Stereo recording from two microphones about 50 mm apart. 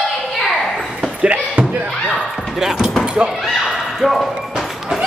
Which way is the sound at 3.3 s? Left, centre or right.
Centre.